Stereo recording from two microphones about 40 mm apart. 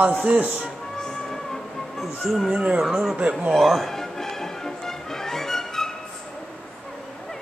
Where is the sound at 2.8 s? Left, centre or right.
Centre.